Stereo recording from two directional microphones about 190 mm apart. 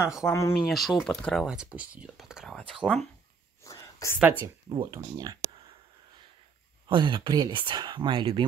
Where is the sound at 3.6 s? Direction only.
15° left (ahead or behind).